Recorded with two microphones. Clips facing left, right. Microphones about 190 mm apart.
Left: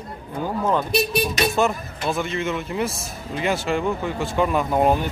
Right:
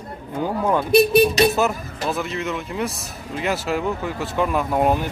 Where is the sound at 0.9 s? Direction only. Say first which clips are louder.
Right 8 dB; 55° right (ahead or behind).